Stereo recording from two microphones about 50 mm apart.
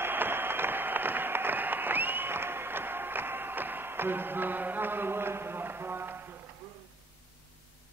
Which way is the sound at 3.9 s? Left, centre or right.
Right.